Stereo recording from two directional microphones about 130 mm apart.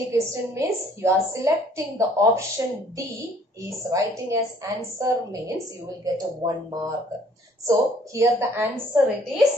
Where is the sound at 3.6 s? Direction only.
25° right (ahead or behind).